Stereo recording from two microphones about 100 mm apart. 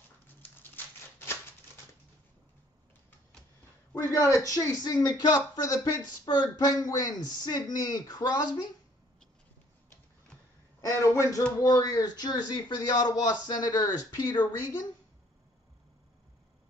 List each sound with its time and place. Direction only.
0.4 s a sound: 20° left (ahead or behind)
4.1 s speech: 30° left (ahead or behind)
10.8 s speech: 30° left (ahead or behind)